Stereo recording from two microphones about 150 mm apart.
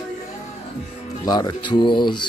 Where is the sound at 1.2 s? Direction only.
25° left (ahead or behind).